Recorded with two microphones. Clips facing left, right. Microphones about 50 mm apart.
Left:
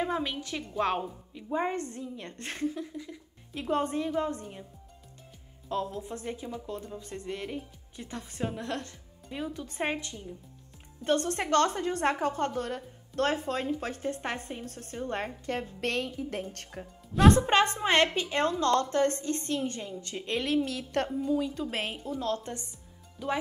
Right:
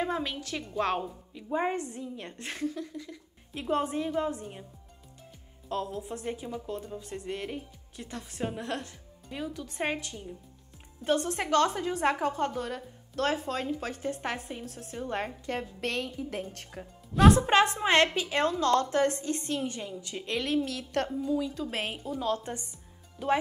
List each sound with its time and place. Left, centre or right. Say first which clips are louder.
0.0 s speech: left 1 dB; centre
1.5 s a woman's voice: right 1 dB; centre
2.6 s speech: left 1 dB; centre
3.5 s speech: even; centre
5.7 s speech: left 1 dB; centre
9.3 s speech: left 1 dB; centre
11.1 s speech: even; centre
20.2 s speech: left 1 dB; centre
22.1 s a woman's voice: right 2 dB; centre